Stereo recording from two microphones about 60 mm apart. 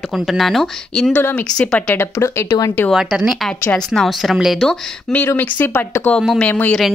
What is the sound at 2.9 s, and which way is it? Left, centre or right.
A woman's voice, centre.